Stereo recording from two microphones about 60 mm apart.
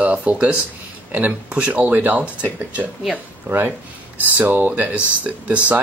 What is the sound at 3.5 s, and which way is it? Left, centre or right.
Speech, right.